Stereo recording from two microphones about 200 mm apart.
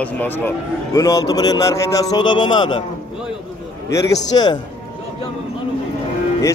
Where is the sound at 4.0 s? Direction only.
20° left (ahead or behind).